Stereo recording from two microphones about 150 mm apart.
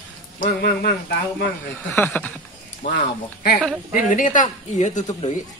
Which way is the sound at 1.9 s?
15° left (ahead or behind).